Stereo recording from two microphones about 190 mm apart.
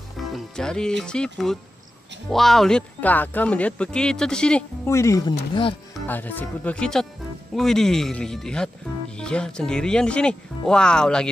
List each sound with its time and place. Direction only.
0.3 s speech: 5° left (ahead or behind)
5.5 s speech: 25° left (ahead or behind)
6.0 s speech: 10° left (ahead or behind)